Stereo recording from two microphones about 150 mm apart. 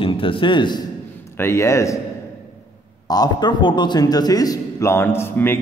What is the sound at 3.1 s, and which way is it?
A man's voice, 25° left (ahead or behind).